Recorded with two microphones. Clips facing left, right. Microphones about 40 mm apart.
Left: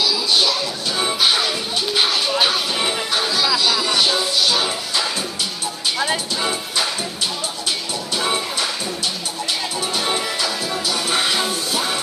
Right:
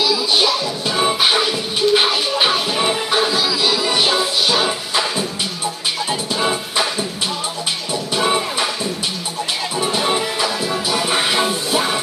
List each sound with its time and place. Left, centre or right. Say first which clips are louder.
0.0 s music: right 2 dB; centre
6.3 s music: right 3 dB; centre
8.1 s music: right 4 dB; centre
9.8 s music: right 6 dB; centre